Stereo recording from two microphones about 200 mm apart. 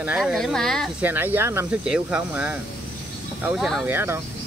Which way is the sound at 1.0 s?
10° right (ahead or behind).